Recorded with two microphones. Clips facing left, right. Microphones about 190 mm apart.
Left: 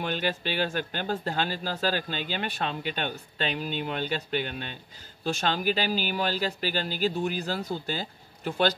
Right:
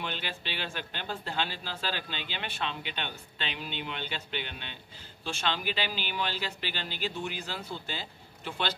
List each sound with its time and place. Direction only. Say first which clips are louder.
0.0 s speech: left 8 dB; 45° left (ahead or behind)